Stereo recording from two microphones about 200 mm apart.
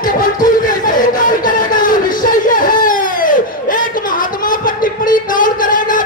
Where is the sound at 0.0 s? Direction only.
40° left (ahead or behind).